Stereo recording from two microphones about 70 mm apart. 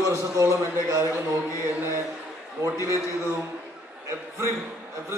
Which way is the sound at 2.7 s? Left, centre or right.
Left.